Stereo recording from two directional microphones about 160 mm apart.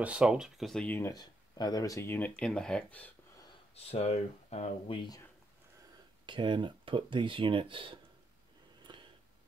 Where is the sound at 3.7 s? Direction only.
40° left (ahead or behind).